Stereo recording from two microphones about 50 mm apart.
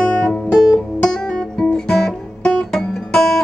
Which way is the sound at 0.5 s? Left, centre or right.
Centre.